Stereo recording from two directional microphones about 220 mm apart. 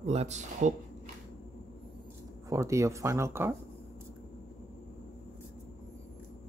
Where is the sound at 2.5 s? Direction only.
15° right (ahead or behind).